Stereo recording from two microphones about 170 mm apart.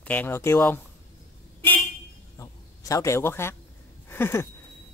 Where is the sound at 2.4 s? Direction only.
20° left (ahead or behind).